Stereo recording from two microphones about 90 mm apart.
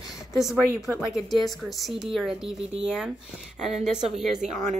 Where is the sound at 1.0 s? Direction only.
5° right (ahead or behind).